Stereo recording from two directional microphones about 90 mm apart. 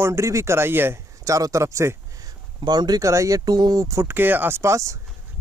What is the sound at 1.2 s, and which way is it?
Speech, 40° right (ahead or behind).